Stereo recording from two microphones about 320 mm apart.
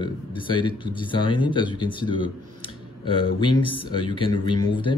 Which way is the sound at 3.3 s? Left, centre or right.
Centre.